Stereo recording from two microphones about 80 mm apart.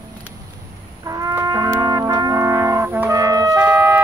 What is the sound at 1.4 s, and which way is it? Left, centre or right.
Brass instrument, right.